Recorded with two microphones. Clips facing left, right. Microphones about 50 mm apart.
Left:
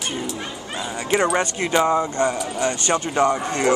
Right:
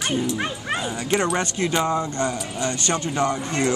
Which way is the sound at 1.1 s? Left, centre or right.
Centre.